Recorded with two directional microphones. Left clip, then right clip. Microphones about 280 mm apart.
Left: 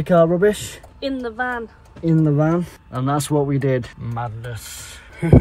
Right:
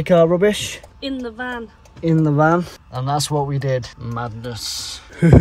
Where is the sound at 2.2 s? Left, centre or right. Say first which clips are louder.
Right 5 dB; right.